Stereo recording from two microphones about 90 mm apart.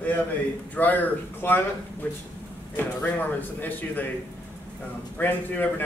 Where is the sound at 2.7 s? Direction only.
20° left (ahead or behind).